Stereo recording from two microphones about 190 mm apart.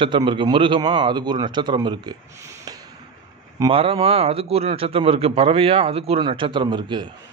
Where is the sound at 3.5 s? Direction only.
25° right (ahead or behind).